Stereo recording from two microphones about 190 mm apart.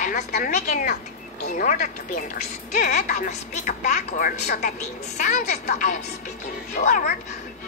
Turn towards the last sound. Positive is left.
turn(degrees=45)  # may be behind; listen again after turning